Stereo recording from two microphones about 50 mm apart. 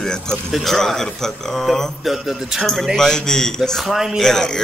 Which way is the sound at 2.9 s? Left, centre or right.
Centre.